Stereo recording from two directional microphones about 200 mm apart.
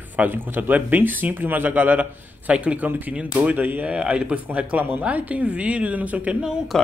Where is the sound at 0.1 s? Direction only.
10° right (ahead or behind).